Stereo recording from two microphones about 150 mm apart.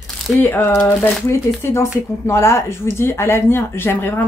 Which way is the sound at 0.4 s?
10° left (ahead or behind).